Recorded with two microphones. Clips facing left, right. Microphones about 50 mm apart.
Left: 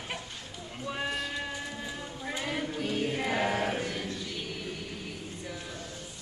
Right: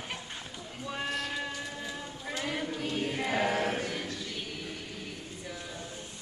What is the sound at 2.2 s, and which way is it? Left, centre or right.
Choir, centre.